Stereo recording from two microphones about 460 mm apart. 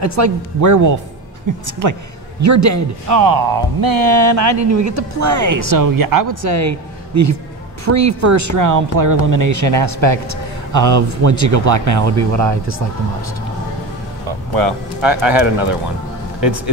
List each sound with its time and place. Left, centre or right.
0.0 s a man's voice: right
14.5 s speech: right